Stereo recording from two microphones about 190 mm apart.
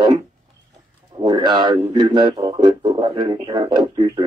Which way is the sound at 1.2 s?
20° right (ahead or behind).